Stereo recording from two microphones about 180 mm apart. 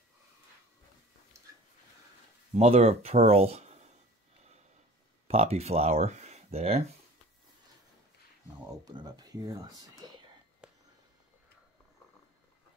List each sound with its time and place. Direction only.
2.5 s speech: 35° right (ahead or behind)
5.3 s speech: 35° right (ahead or behind)
8.9 s speech: 25° right (ahead or behind)
10.6 s a sound: 5° right (ahead or behind)